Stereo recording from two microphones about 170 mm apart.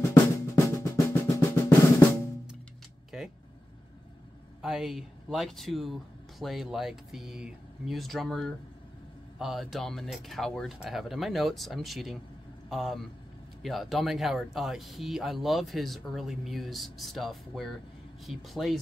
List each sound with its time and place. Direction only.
0.6 s drum: 20° left (ahead or behind)
4.6 s a man's voice: centre (ahead or behind)